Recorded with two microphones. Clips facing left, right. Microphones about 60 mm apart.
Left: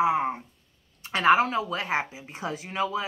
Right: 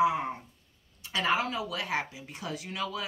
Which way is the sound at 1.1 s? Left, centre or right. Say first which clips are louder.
Left 8 dB; left.